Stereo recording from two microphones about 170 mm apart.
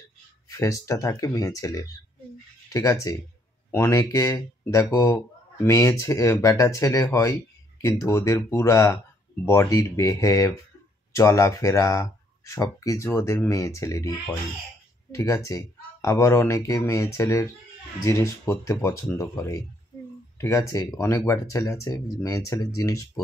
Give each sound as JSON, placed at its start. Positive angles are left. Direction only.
{"t": 0.5, "sound": "speech", "side_deg": 20}